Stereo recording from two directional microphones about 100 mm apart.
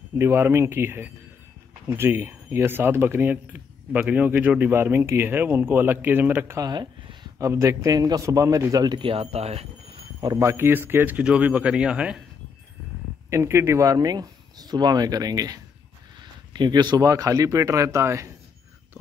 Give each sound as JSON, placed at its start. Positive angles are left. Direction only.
{"t": 0.2, "sound": "a man's voice", "side_deg": -25}
{"t": 6.6, "sound": "speech", "side_deg": -45}
{"t": 7.3, "sound": "a man's voice", "side_deg": -30}
{"t": 10.2, "sound": "speech", "side_deg": -35}
{"t": 13.3, "sound": "a man's voice", "side_deg": -25}
{"t": 17.1, "sound": "a man's voice", "side_deg": -35}